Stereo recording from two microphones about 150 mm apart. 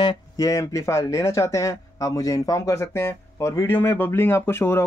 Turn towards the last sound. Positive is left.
turn(degrees=15)  # may be behind; listen again after turning